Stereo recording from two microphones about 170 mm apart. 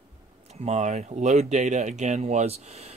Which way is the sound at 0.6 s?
40° right (ahead or behind).